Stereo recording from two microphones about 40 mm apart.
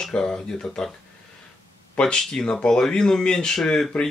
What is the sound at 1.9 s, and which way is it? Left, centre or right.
Speech, centre.